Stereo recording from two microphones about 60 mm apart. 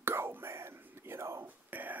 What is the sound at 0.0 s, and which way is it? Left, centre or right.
Whispering, right.